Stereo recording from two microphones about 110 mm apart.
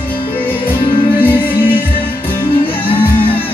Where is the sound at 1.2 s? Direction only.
15° left (ahead or behind).